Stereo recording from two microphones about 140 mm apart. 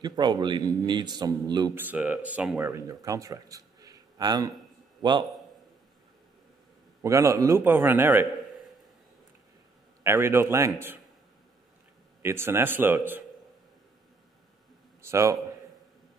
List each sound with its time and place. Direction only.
0.0 s a man's voice: 30° right (ahead or behind)
1.8 s a man's voice: 10° right (ahead or behind)
2.7 s speech: 25° right (ahead or behind)
7.0 s a man's voice: 20° right (ahead or behind)
10.0 s a man's voice: 20° right (ahead or behind)
12.2 s a man's voice: 20° right (ahead or behind)
15.0 s a man's voice: 20° right (ahead or behind)